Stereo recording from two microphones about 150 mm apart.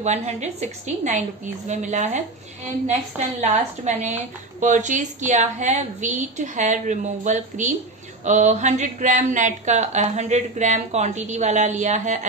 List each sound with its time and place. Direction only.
0.0 s a woman's voice: 50° right (ahead or behind)